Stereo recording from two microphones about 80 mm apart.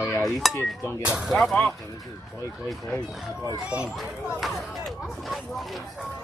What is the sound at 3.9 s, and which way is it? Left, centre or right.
Speech, centre.